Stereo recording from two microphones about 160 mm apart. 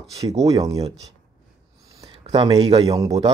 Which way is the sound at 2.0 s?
30° right (ahead or behind).